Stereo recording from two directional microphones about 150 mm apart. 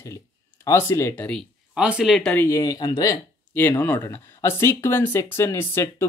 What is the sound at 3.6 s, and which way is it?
Speech, 10° left (ahead or behind).